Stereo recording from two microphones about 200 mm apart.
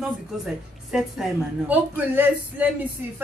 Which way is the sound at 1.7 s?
10° right (ahead or behind).